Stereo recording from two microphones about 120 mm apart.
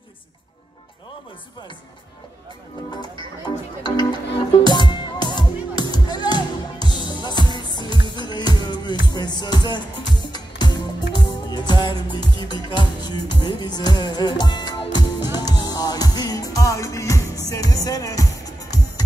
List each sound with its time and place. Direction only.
3.0 s music: 40° left (ahead or behind)